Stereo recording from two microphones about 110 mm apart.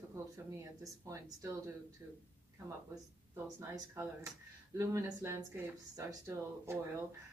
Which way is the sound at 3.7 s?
25° right (ahead or behind).